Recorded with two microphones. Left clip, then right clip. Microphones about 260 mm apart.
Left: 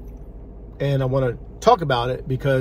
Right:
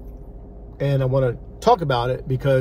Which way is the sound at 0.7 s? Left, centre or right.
Centre.